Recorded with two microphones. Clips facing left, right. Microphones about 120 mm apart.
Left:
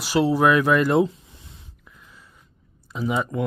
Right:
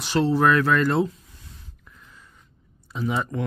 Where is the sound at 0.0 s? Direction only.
10° left (ahead or behind).